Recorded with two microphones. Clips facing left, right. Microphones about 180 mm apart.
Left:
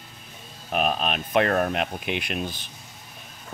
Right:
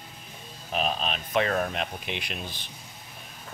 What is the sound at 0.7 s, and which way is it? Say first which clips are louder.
Speech: left 4 dB; 55° left (ahead or behind).